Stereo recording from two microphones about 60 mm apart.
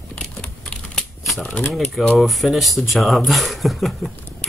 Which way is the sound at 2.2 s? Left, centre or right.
Centre.